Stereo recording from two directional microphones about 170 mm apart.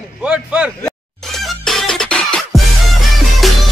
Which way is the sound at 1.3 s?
Centre (ahead or behind).